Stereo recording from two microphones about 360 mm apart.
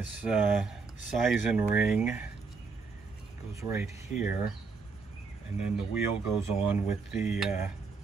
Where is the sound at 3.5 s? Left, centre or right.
Centre.